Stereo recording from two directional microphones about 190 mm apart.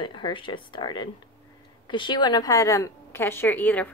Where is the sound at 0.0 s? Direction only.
25° left (ahead or behind).